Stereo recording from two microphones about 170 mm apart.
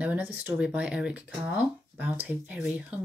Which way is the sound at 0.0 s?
10° right (ahead or behind).